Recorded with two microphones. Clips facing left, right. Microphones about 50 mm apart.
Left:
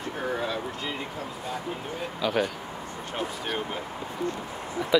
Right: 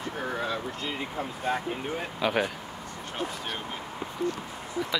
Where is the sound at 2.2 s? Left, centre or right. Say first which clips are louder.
Left 1 dB; centre.